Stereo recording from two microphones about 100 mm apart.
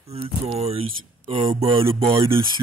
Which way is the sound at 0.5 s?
90° right.